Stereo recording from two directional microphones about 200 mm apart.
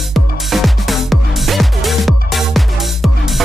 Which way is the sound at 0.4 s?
Centre (ahead or behind).